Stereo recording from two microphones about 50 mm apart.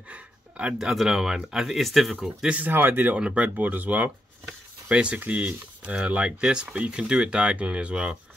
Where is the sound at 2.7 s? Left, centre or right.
Right.